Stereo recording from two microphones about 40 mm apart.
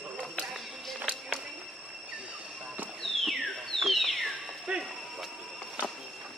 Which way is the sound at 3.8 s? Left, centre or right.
Centre.